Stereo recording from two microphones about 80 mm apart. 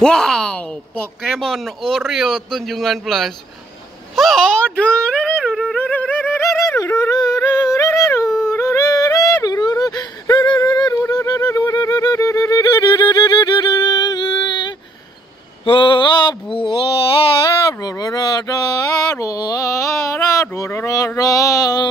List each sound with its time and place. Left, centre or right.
0.0 s a man's voice: centre
5.8 s yodeling: left
6.4 s yodeling: left
11.7 s music: left
15.6 s mantra: left
17.8 s a sound: left
18.9 s a sound: left